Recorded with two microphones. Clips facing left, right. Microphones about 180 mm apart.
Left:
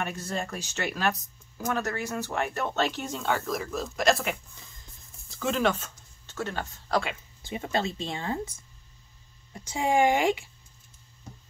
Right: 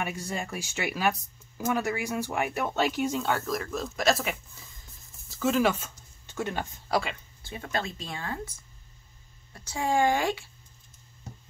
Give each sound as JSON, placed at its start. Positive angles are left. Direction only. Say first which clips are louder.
{"t": 0.0, "sound": "speech", "louder": "left 1 dB", "side_deg": -10}
{"t": 7.4, "sound": "speech", "louder": "left 4 dB", "side_deg": 20}
{"t": 9.5, "sound": "speech", "louder": "left 2 dB", "side_deg": 20}